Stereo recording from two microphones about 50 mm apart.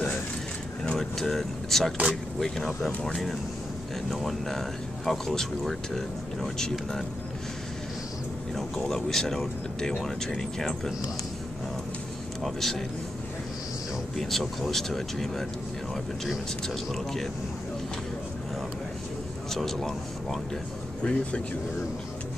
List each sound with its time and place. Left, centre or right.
0.9 s speech: centre
4.1 s speech: centre
8.5 s speech: centre
12.4 s speech: centre
14.1 s speech: centre
16.6 s speech: centre
19.5 s speech: centre
21.0 s speech: left